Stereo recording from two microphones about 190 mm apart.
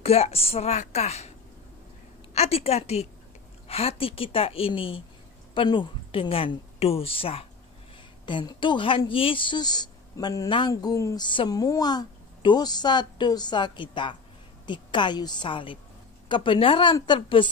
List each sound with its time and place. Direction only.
0.0 s a woman's voice: 30° left (ahead or behind)
2.3 s a woman's voice: 30° left (ahead or behind)